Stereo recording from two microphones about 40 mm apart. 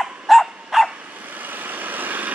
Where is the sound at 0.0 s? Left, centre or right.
Centre.